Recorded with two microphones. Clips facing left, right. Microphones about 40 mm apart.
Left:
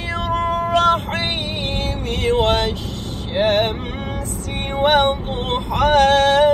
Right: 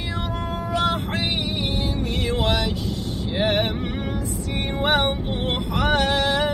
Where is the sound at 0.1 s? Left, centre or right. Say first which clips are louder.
Left 10 dB; left.